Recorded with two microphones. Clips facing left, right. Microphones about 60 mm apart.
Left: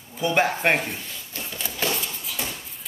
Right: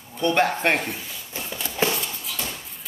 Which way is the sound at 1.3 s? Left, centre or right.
Centre.